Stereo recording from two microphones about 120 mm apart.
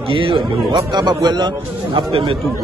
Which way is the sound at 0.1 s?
50° right (ahead or behind).